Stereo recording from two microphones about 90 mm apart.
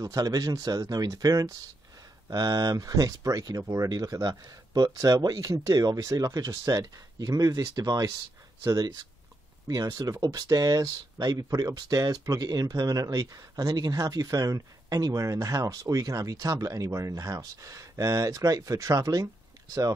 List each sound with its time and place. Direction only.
0.0 s speech: 40° right (ahead or behind)